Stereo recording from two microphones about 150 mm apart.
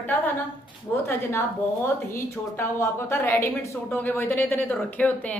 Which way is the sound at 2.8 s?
15° left (ahead or behind).